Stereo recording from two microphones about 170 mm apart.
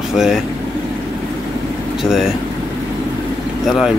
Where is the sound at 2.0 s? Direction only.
Centre (ahead or behind).